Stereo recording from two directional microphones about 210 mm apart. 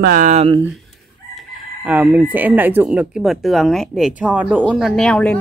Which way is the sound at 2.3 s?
10° right (ahead or behind).